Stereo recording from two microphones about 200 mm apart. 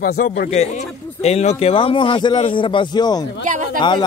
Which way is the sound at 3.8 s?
25° left (ahead or behind).